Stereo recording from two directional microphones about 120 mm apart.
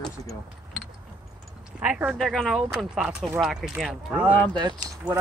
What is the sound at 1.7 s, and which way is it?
Speech, 15° right (ahead or behind).